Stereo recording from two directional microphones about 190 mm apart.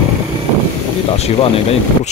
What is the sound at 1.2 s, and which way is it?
Speech, 30° left (ahead or behind).